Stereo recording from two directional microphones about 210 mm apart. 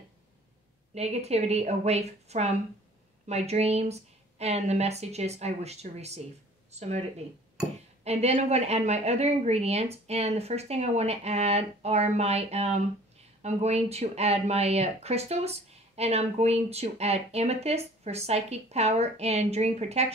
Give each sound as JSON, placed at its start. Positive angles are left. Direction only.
{"t": 0.9, "sound": "speech", "side_deg": -30}